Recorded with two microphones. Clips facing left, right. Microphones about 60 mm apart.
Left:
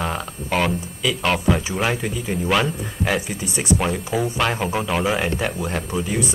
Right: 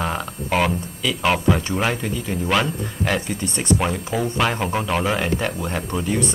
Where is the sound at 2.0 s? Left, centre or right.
Centre.